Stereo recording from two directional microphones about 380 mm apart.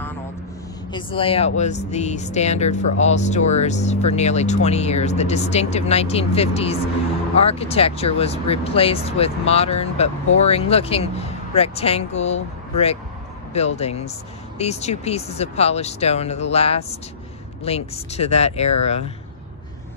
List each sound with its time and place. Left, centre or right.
0.9 s speech: centre